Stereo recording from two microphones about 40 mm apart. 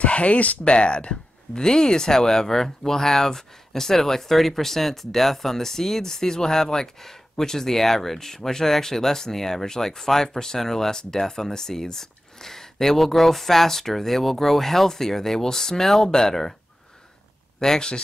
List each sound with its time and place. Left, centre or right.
0.0 s speech: left; by 16.5 s centre
17.6 s speech: centre